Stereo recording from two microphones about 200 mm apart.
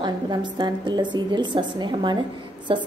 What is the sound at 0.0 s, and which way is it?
A woman's voice, 20° right (ahead or behind).